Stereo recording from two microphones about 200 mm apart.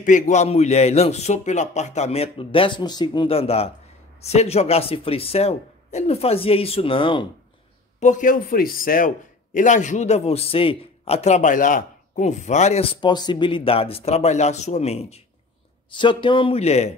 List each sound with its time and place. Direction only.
0.0 s a man's voice: 40° left (ahead or behind)
8.0 s a man's voice: 40° left (ahead or behind)